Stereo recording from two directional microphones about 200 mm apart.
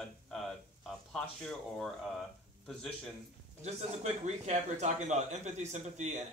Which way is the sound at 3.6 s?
35° right (ahead or behind).